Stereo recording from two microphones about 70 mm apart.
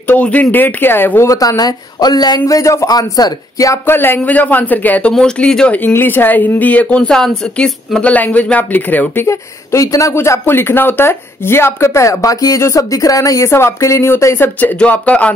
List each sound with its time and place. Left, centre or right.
0.0 s speech: left
1.3 s speech: left
2.4 s speech: left
2.9 s speech: left
3.8 s speech: left
5.1 s speech: centre
5.9 s speech: left; by 8.1 s centre
8.1 s speech: left
9.3 s speech: left
10.1 s speech: left
13.5 s speech: left
14.4 s speech: left